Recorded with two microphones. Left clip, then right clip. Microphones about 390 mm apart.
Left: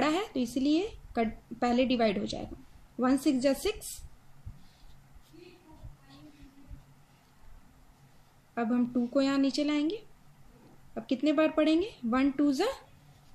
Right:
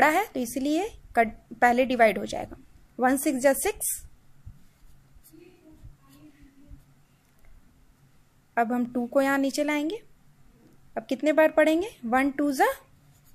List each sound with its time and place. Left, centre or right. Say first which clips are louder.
0.0 s a woman's voice: right 8 dB; centre
8.5 s a woman's voice: right 5 dB; centre
11.1 s a woman's voice: right 6 dB; centre